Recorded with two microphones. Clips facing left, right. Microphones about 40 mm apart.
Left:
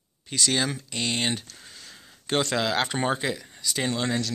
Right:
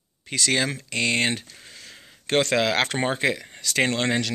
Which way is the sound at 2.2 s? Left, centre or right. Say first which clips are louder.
Right 4 dB; right.